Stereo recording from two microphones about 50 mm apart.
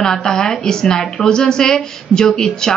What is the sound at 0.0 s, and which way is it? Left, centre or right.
A woman's voice, centre.